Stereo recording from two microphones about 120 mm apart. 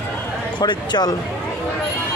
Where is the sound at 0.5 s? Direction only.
40° left (ahead or behind).